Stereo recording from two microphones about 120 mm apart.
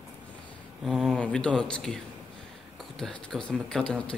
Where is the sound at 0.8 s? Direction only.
Centre (ahead or behind).